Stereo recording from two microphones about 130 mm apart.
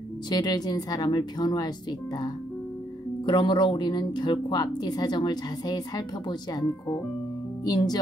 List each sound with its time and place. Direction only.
0.3 s speech: 30° left (ahead or behind)
7.6 s speech: 30° left (ahead or behind)